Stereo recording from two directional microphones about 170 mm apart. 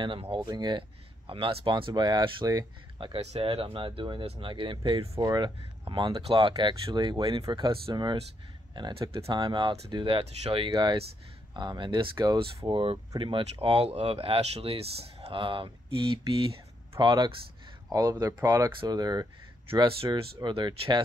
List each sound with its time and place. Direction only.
0.0 s speech: 30° right (ahead or behind)